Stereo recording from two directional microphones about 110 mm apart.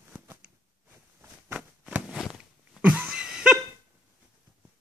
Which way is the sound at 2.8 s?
15° right (ahead or behind).